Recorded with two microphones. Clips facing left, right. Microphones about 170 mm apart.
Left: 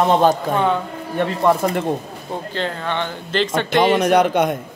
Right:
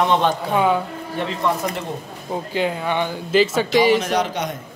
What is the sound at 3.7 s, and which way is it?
Speech, 60° left (ahead or behind).